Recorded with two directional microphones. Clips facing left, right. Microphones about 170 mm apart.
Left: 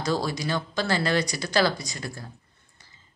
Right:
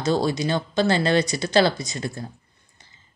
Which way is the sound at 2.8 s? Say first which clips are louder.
Right 2 dB; 20° right (ahead or behind).